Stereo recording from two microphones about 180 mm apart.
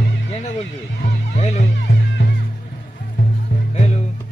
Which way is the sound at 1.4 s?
40° left (ahead or behind).